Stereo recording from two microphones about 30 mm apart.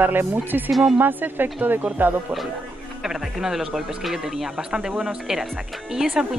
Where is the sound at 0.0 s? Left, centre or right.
Right.